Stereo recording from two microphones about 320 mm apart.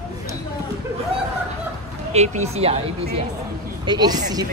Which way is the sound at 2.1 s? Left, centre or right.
Right.